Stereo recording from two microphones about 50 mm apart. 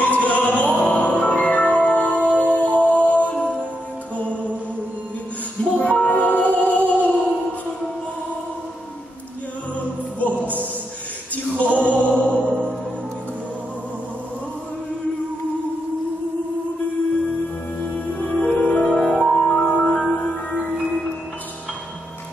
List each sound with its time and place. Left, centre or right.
0.0 s music: left
5.8 s music: left
9.8 s music: left
11.5 s music: left
12.4 s music: right
17.8 s music: left